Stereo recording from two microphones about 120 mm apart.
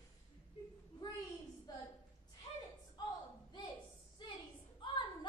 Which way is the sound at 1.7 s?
35° left (ahead or behind).